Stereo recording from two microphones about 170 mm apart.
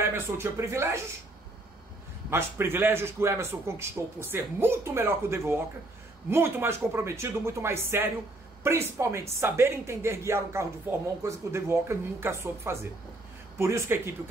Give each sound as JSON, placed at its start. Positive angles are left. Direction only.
{"t": 0.0, "sound": "speech", "side_deg": -15}
{"t": 2.3, "sound": "speech", "side_deg": -15}